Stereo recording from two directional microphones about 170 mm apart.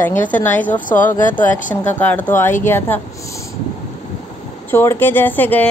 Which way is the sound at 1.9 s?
10° left (ahead or behind).